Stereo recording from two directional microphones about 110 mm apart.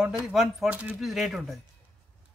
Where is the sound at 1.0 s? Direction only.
Centre (ahead or behind).